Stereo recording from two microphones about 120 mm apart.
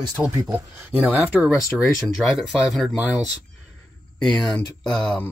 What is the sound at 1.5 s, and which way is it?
Speech, 25° left (ahead or behind).